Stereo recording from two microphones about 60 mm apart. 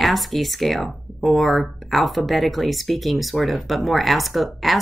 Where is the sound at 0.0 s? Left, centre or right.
Centre.